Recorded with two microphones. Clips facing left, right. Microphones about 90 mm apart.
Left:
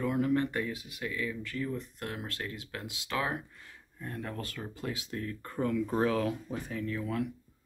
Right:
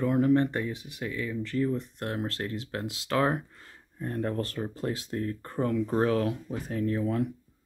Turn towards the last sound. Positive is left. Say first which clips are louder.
# right 6 dB
turn(degrees=-35)  # may be behind; listen again after turning